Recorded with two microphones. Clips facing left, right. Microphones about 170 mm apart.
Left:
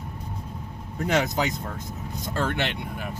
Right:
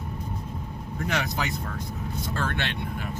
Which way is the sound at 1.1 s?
20° left (ahead or behind).